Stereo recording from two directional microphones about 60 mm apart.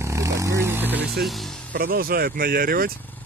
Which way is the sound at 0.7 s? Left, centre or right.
Right.